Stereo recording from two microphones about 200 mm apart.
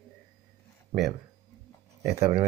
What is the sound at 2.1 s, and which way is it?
Speech, 15° right (ahead or behind).